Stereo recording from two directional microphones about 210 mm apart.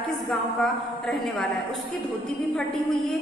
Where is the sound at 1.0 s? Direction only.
Centre (ahead or behind).